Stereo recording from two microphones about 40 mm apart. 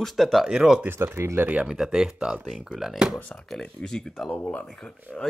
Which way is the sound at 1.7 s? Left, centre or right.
Centre.